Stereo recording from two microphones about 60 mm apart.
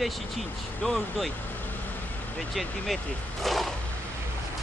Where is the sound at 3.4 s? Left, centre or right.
Centre.